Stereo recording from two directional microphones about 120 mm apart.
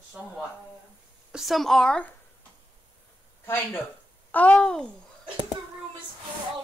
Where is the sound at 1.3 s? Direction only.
Centre (ahead or behind).